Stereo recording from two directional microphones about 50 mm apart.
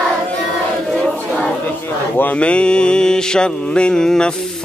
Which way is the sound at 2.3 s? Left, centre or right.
Left.